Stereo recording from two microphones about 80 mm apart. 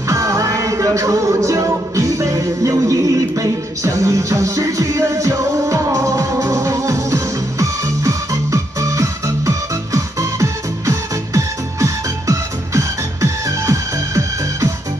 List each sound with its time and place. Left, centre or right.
0.1 s music: right